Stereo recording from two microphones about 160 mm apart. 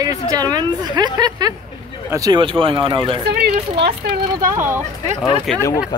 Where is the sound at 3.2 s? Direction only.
90° right.